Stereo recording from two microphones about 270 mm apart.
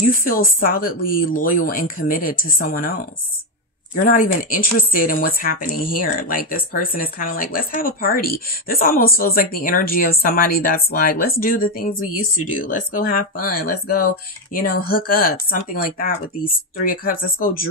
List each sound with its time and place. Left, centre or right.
0.2 s speech: left